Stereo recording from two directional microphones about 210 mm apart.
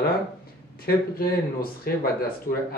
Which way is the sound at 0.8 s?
45° left (ahead or behind).